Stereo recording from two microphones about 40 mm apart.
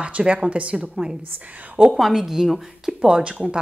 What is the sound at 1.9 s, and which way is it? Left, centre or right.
A woman's voice, centre.